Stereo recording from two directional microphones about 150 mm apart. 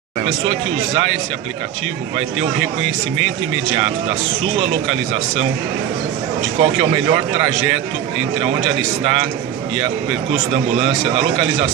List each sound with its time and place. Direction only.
4.6 s speech: 40° right (ahead or behind)
6.6 s speech: 40° right (ahead or behind)
8.4 s speech: 40° right (ahead or behind)
10.3 s speech: 40° right (ahead or behind)